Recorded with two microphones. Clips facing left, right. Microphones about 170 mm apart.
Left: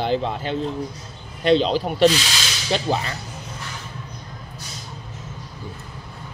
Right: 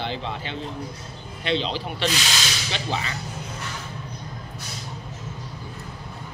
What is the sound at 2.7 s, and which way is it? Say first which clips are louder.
Whip: left 13 dB; 45° left (ahead or behind).